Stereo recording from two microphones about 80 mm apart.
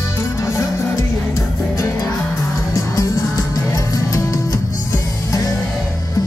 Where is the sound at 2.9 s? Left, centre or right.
Left.